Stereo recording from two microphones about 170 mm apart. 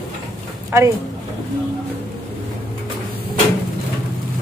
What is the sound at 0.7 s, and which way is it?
Speech, 15° right (ahead or behind).